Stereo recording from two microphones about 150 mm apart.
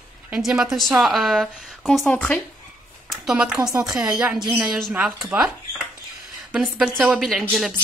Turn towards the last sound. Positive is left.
turn(degrees=-5)  # may be behind; listen again after turning